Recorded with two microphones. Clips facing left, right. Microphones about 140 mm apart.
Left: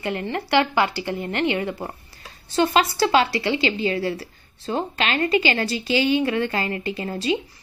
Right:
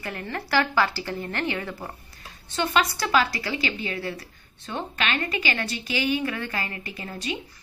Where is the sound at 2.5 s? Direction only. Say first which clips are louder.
Left 5 dB; 30° left (ahead or behind).